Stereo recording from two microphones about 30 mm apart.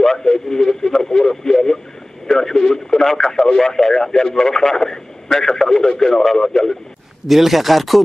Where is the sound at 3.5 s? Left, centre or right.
Centre.